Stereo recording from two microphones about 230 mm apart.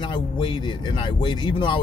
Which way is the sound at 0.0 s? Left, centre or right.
Left.